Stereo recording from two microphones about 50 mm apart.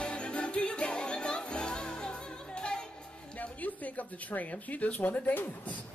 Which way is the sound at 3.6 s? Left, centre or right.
Left.